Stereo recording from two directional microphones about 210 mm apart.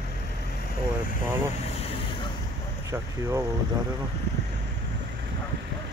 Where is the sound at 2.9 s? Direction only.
15° right (ahead or behind).